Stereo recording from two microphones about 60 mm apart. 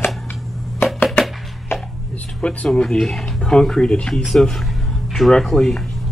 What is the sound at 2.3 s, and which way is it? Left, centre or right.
Speech, centre.